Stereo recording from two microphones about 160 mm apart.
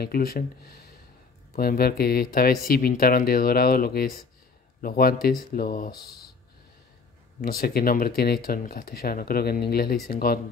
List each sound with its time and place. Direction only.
0.0 s speech: 75° left (ahead or behind)
7.4 s speech: 70° left (ahead or behind)